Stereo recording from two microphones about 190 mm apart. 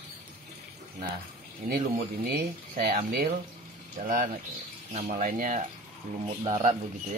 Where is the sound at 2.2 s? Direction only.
55° right (ahead or behind); by 6.8 s 35° right (ahead or behind).